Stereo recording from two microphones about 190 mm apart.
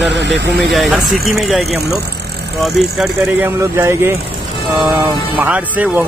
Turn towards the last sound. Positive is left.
turn(degrees=-10)  # may be behind; listen again after turning